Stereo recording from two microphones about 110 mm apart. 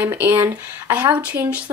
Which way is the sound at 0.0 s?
20° right (ahead or behind).